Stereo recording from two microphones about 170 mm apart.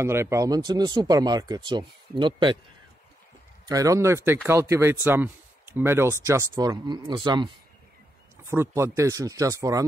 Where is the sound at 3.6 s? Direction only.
20° right (ahead or behind).